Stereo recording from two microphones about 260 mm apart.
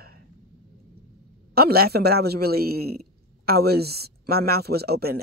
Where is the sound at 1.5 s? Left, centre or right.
Right.